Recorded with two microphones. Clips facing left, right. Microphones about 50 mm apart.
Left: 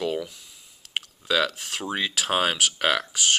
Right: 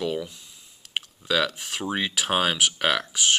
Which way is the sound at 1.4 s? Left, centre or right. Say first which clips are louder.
Right 1 dB; centre.